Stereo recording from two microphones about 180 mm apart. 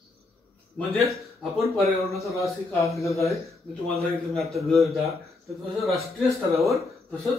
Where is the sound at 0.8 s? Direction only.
5° left (ahead or behind).